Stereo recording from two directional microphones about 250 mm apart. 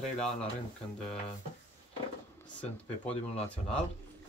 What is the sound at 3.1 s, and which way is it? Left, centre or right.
Speech, left.